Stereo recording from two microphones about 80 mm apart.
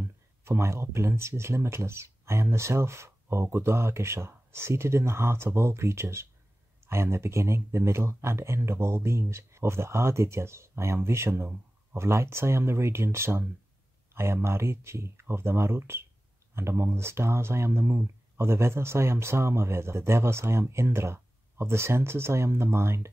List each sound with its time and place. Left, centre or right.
0.0 s speech: right